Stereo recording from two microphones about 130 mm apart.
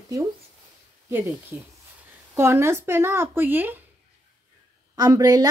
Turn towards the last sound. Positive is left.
turn(degrees=-30)  # may be behind; listen again after turning